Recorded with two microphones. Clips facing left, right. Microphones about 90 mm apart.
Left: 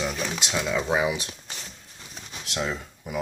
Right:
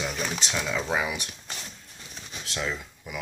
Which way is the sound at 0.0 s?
Centre (ahead or behind).